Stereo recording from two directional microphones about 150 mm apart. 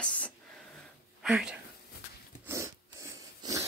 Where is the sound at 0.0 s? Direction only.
10° left (ahead or behind).